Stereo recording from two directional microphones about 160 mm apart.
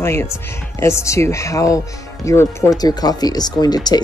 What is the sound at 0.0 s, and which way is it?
A woman's voice, 15° left (ahead or behind).